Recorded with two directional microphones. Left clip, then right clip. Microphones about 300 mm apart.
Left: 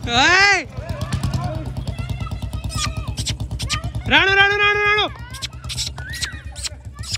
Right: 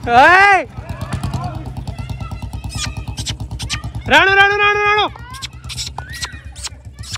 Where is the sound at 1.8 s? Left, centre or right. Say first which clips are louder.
Even; centre.